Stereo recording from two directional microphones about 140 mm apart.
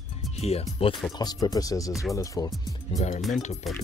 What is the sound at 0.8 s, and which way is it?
Speech, 30° left (ahead or behind).